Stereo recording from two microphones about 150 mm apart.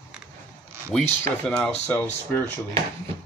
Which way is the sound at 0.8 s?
10° left (ahead or behind).